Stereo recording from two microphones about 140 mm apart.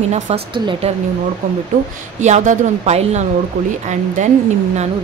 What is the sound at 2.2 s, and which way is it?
A woman's voice, 60° right (ahead or behind).